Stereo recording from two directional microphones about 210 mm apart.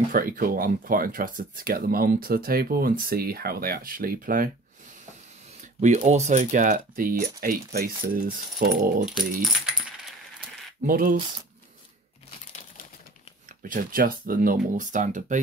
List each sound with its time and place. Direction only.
0.1 s speech: 40° right (ahead or behind)
5.6 s speech: 35° right (ahead or behind)
9.0 s speech: centre (ahead or behind)
10.9 s speech: 45° right (ahead or behind)
13.6 s speech: 40° right (ahead or behind)